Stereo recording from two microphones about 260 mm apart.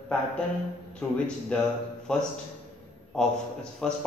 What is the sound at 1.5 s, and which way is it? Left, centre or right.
Speech, centre.